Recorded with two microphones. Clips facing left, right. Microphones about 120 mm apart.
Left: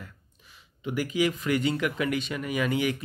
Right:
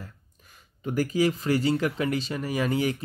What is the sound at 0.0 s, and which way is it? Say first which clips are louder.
Speech: right 2 dB; 45° right (ahead or behind).